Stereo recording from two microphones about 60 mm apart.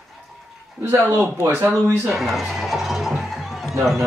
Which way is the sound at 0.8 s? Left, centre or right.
Right.